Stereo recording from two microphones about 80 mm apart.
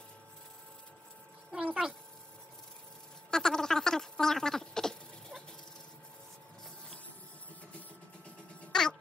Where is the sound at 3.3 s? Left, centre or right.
Centre.